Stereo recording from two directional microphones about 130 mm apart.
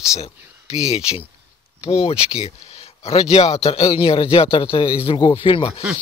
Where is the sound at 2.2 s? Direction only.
10° right (ahead or behind).